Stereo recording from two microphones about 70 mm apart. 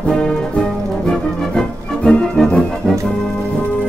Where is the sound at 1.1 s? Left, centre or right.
Centre.